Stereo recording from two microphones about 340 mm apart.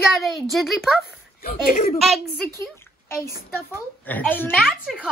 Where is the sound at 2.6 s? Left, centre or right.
Centre.